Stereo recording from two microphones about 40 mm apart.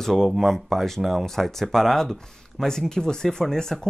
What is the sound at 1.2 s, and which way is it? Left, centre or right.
Speech, centre.